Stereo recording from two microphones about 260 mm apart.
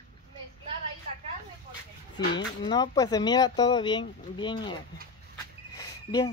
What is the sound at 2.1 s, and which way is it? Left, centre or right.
Speech, centre.